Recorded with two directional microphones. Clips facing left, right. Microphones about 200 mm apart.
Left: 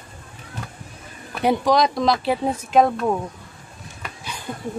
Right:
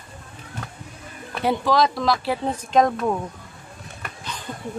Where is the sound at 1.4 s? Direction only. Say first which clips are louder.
Left 2 dB; 15° left (ahead or behind).